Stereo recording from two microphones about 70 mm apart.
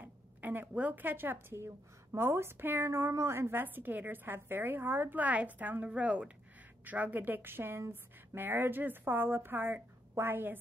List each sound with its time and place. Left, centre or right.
0.0 s a woman's voice: right